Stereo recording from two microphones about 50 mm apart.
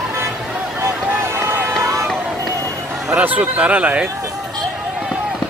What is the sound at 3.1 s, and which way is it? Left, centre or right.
Speech, right.